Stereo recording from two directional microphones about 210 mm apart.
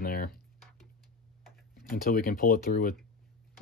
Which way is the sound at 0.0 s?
45° left (ahead or behind).